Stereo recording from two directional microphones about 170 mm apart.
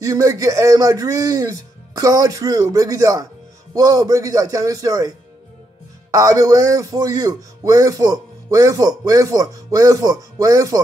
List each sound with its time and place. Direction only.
0.0 s a man's voice: 20° right (ahead or behind)
6.1 s a man's voice: 20° right (ahead or behind)